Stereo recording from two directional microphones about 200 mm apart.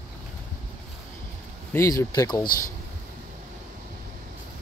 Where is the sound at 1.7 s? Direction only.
15° left (ahead or behind).